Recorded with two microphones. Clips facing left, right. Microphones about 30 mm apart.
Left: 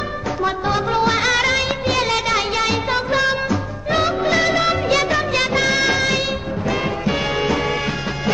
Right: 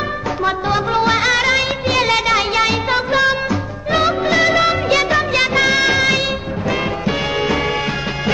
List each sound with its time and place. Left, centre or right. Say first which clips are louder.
0.4 s music of bollywood: right 2 dB; centre
2.3 s music: right 3 dB; centre
3.9 s music of bollywood: right 2 dB; centre